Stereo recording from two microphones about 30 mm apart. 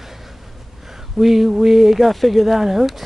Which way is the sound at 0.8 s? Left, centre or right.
Centre.